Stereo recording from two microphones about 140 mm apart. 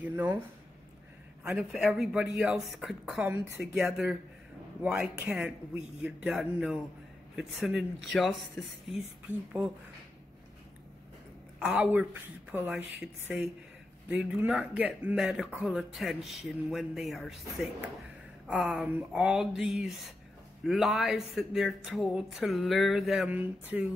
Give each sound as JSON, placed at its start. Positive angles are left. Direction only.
{"t": 0.0, "sound": "speech", "side_deg": -10}
{"t": 1.4, "sound": "speech", "side_deg": -5}
{"t": 11.6, "sound": "speech", "side_deg": -10}